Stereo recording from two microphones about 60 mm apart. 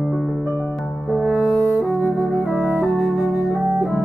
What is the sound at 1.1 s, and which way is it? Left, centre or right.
French horn, centre.